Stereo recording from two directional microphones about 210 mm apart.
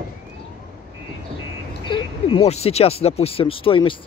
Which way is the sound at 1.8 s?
25° left (ahead or behind).